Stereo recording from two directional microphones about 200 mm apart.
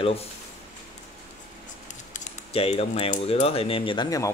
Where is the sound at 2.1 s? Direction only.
35° left (ahead or behind).